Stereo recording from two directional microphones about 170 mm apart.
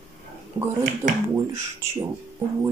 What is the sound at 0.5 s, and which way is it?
Speech, 20° right (ahead or behind).